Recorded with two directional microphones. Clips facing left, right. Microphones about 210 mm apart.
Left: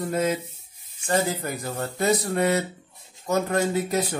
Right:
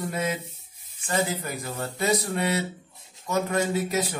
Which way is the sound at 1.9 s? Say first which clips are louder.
Left 3 dB; 45° left (ahead or behind).